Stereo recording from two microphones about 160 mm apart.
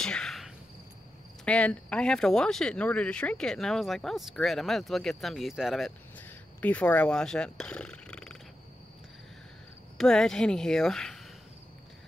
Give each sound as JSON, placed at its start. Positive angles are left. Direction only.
{"t": 0.0, "sound": "cricket", "side_deg": 5}
{"t": 1.4, "sound": "speech", "side_deg": 10}
{"t": 6.1, "sound": "speech", "side_deg": 10}
{"t": 9.9, "sound": "speech", "side_deg": 5}